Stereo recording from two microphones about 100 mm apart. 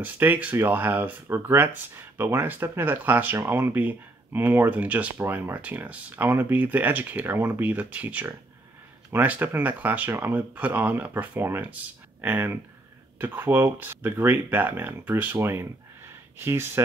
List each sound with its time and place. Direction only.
0.0 s speech: 20° right (ahead or behind)